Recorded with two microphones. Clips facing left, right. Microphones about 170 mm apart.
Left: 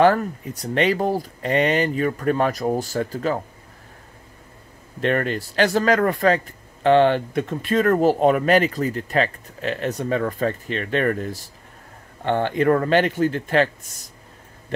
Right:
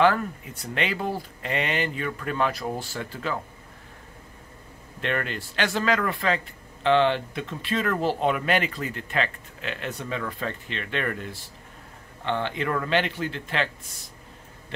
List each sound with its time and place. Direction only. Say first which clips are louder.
0.0 s speech: left 5 dB; 40° left (ahead or behind)
5.0 s speech: left 7 dB; 40° left (ahead or behind)